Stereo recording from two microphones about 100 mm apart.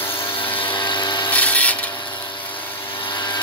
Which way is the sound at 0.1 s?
60° left (ahead or behind).